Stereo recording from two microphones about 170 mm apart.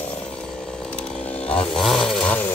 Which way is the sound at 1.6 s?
Centre (ahead or behind).